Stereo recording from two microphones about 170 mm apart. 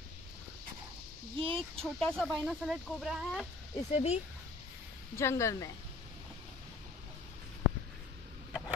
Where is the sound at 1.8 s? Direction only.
5° left (ahead or behind).